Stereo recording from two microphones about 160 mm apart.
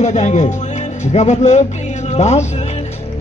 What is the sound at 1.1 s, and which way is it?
Music, 45° left (ahead or behind).